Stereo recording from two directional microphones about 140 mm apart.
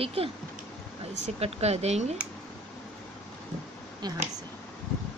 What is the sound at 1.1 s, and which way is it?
Speech, 55° right (ahead or behind).